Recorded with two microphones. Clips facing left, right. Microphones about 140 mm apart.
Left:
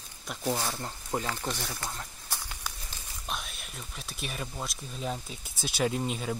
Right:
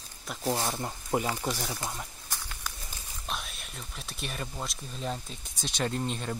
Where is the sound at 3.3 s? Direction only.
Centre (ahead or behind).